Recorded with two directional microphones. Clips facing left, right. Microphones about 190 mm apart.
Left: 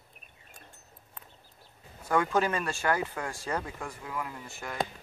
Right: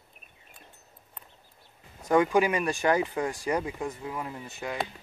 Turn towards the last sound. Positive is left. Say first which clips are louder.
# right 5 dB
turn(degrees=-20)  # may be behind; listen again after turning